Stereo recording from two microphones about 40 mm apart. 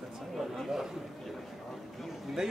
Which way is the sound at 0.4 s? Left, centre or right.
Centre.